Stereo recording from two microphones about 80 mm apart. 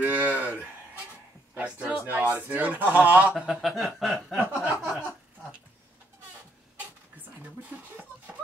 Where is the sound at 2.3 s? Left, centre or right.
Centre.